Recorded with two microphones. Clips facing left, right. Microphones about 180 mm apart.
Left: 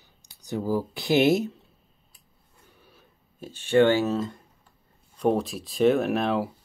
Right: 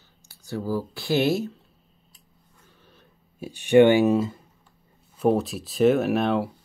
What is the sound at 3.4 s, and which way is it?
Speech, 15° right (ahead or behind).